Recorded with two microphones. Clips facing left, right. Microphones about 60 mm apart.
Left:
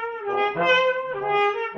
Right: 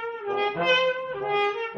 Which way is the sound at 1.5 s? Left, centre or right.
Centre.